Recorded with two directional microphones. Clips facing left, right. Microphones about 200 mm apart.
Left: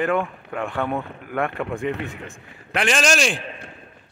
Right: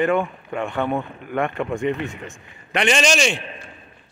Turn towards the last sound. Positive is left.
turn(degrees=0)  # may be behind; listen again after turning